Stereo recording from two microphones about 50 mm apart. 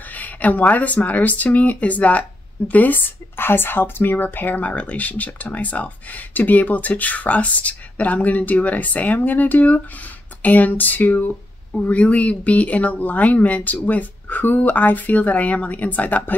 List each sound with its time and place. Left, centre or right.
0.1 s a woman's voice: left